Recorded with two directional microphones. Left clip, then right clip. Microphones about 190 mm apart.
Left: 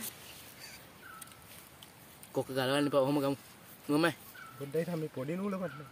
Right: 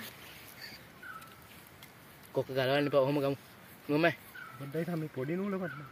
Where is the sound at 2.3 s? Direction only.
20° left (ahead or behind).